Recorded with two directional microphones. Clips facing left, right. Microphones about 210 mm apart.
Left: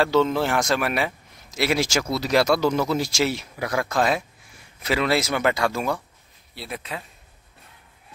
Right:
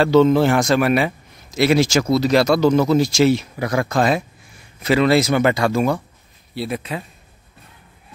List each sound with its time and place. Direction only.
0.0 s speech: centre (ahead or behind)